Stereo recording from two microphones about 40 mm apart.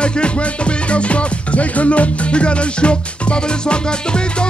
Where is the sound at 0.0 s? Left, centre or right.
Left.